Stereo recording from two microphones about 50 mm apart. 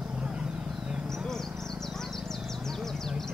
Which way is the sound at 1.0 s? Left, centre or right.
Centre.